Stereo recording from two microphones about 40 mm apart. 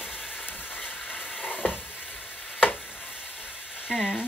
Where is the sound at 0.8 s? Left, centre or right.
Left.